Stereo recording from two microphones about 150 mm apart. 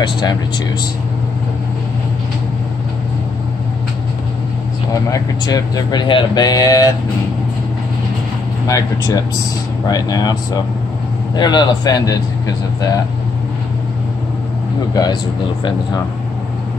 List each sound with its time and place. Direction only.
0.0 s speech: 30° left (ahead or behind)
5.1 s speech: 25° left (ahead or behind)
8.6 s speech: 25° left (ahead or behind)